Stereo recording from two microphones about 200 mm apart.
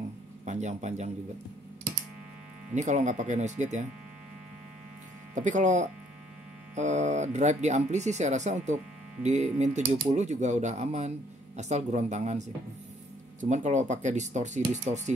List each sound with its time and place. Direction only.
0.5 s speech: 35° right (ahead or behind)
2.7 s speech: 35° right (ahead or behind)
5.3 s speech: 40° right (ahead or behind)